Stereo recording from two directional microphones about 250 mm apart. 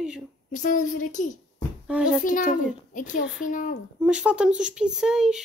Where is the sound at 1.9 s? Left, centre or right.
Centre.